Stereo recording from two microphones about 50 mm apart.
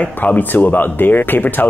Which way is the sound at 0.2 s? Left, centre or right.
Left.